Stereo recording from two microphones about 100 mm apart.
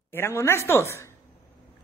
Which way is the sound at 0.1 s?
25° left (ahead or behind).